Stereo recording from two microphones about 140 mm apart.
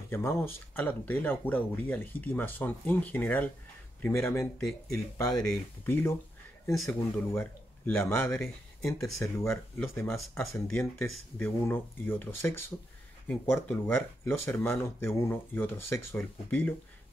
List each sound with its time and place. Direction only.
0.1 s speech: 15° left (ahead or behind)
9.0 s speech: 20° left (ahead or behind)